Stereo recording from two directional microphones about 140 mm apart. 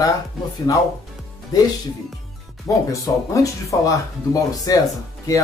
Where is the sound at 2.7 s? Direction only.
25° left (ahead or behind).